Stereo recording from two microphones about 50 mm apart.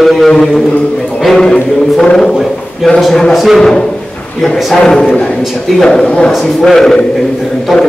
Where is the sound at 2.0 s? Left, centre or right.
Centre.